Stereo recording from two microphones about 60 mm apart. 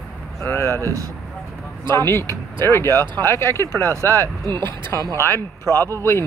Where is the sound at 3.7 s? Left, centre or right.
Right.